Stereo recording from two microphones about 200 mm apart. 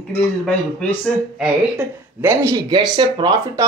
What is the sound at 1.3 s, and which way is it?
Speech, 5° right (ahead or behind).